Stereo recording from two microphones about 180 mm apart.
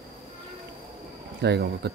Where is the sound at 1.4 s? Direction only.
70° right (ahead or behind).